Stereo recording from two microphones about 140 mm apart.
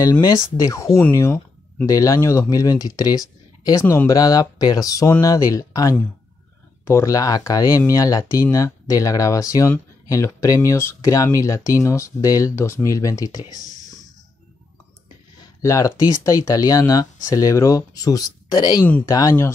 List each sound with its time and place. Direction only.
0.0 s speech: 25° left (ahead or behind)
15.6 s speech: 20° left (ahead or behind)